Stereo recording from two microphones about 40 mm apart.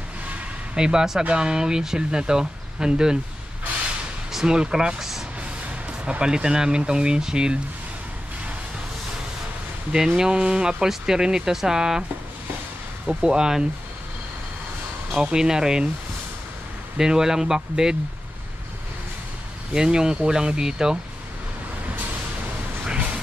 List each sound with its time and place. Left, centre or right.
0.7 s speech: right
4.3 s a sound: centre
4.6 s speech: centre
6.0 s speech: right
9.9 s speech: centre
13.1 s speech: centre
15.3 s speech: centre
16.9 s speech: centre
19.7 s speech: centre